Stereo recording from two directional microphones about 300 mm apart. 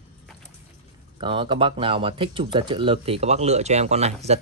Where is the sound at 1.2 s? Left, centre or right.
Centre.